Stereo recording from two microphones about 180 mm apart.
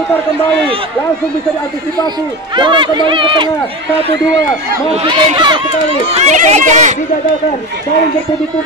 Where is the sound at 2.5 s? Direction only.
25° right (ahead or behind).